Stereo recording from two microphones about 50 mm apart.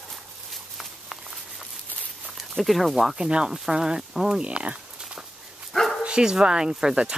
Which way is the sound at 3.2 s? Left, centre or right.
Centre.